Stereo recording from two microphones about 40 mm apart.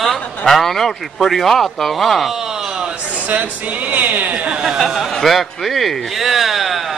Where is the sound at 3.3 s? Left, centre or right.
Right.